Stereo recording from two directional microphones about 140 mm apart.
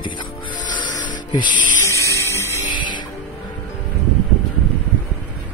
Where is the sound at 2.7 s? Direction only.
35° left (ahead or behind).